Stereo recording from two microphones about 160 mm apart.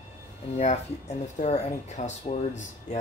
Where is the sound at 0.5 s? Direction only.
45° left (ahead or behind).